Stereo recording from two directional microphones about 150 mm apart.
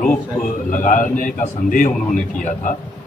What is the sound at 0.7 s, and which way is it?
A man's voice, 60° left (ahead or behind).